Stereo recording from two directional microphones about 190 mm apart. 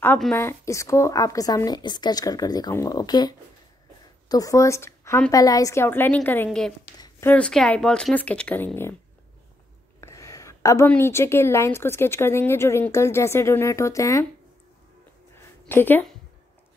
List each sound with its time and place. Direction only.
0.0 s a woman's voice: 10° left (ahead or behind)
9.9 s a woman's voice: 15° left (ahead or behind)
15.6 s speech: 10° left (ahead or behind)